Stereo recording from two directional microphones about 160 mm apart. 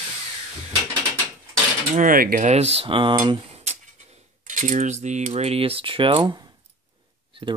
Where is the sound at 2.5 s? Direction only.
40° right (ahead or behind).